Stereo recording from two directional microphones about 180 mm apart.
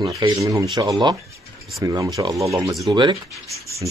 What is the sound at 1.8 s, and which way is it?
Speech, 20° right (ahead or behind).